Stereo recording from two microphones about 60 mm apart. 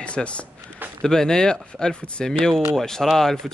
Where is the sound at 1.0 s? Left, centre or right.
Centre.